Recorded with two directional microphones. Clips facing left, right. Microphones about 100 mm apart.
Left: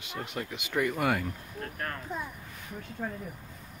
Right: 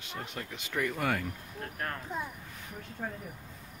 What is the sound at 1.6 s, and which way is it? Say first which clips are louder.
Speech: even; 15° right (ahead or behind).